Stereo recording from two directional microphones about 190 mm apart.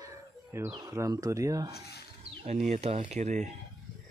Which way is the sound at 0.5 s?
15° right (ahead or behind).